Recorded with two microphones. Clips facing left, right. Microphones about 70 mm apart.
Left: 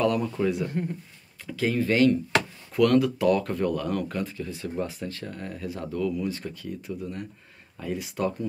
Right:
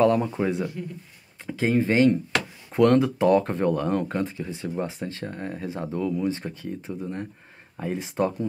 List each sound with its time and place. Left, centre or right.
0.0 s speech: right